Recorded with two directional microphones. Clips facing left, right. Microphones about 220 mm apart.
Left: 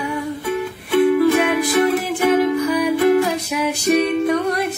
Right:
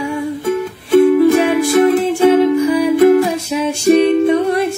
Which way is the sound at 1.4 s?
30° right (ahead or behind).